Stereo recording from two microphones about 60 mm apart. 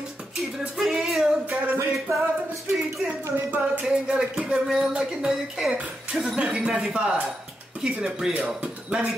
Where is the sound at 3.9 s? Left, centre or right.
Centre.